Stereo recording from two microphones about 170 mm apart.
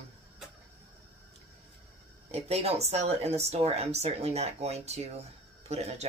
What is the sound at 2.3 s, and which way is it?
Speech, 40° right (ahead or behind).